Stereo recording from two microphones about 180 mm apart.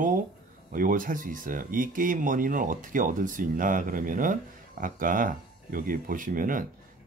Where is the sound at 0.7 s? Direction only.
50° right (ahead or behind).